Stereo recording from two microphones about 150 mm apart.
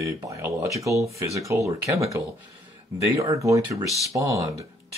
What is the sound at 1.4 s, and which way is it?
Speech, 20° right (ahead or behind).